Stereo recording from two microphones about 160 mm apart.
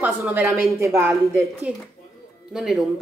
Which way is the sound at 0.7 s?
20° right (ahead or behind).